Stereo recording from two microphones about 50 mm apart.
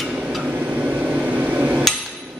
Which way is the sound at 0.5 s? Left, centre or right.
Right.